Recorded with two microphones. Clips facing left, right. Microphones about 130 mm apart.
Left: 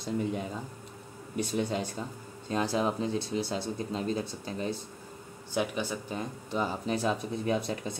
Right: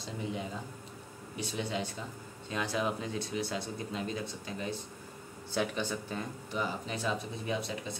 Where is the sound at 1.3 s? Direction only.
50° left (ahead or behind).